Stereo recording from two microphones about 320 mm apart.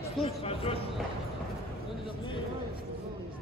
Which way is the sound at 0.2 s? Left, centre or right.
Centre.